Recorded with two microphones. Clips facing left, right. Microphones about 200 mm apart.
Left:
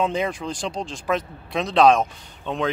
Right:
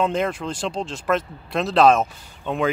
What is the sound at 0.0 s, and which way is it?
Speech, centre (ahead or behind).